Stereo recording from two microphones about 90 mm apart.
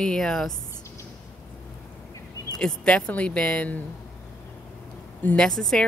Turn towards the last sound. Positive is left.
turn(degrees=5)  # may be behind; listen again after turning